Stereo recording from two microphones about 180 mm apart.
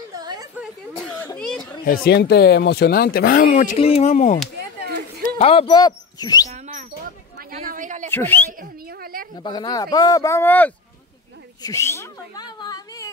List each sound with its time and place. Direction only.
0.1 s a sound: 20° right (ahead or behind)
1.1 s a sound: 10° left (ahead or behind)
1.9 s speech: 60° left (ahead or behind)
3.7 s speech: 35° left (ahead or behind)
6.5 s speech: 40° right (ahead or behind)
8.1 s speech: 10° left (ahead or behind)
8.5 s speech: 55° right (ahead or behind)
9.4 s speech: 25° left (ahead or behind)